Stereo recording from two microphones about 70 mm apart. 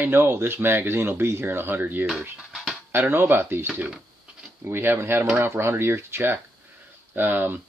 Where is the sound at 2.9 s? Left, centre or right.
Right.